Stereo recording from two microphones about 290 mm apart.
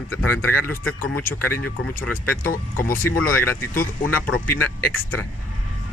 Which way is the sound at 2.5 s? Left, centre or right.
Left.